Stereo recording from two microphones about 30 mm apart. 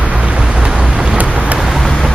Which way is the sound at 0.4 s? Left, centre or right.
Right.